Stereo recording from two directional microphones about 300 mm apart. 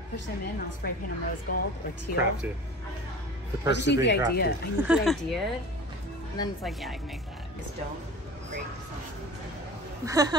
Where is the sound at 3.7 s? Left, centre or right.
Left.